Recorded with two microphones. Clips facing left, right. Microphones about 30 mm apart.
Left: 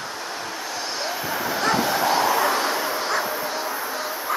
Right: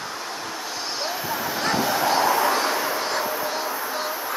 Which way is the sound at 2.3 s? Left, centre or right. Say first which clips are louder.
Even; left.